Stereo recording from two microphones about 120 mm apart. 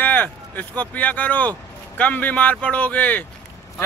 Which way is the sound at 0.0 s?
15° left (ahead or behind).